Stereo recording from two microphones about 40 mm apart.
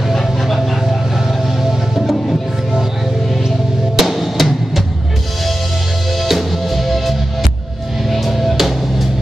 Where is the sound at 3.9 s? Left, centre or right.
Centre.